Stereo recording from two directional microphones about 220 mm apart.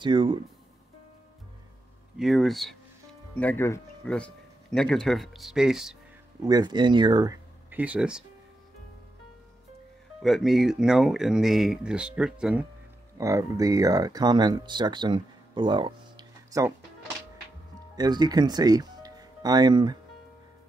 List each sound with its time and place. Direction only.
0.0 s speech: 20° right (ahead or behind)
2.1 s speech: centre (ahead or behind)
6.4 s speech: 20° right (ahead or behind)
7.7 s speech: 5° right (ahead or behind)
10.2 s speech: centre (ahead or behind)
13.2 s speech: 15° right (ahead or behind)
17.9 s speech: 20° right (ahead or behind)